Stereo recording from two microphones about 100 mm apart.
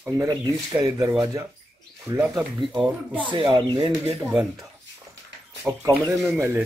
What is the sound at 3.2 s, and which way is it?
Speech, 55° right (ahead or behind).